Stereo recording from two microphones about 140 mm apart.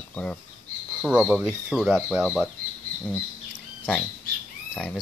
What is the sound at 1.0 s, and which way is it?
Speech, 5° right (ahead or behind).